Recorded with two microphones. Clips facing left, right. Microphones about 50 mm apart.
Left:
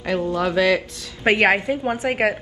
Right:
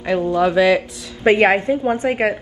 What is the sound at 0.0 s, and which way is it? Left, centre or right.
Speech, right.